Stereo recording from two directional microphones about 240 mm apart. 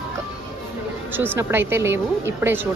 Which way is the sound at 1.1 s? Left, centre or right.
Centre.